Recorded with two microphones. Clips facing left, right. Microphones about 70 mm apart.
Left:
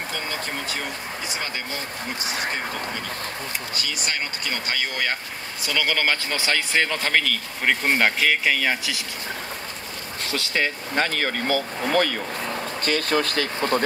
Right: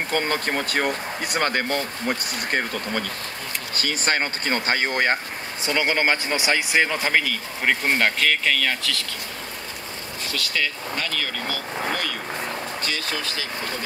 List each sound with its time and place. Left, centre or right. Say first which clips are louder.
0.1 s speech: right 9 dB; right
3.7 s speech: right 8 dB; right
5.7 s speech: right 2 dB; right
7.8 s speech: left 2 dB; centre
10.3 s speech: left 2 dB; left
12.8 s speech: left 10 dB; left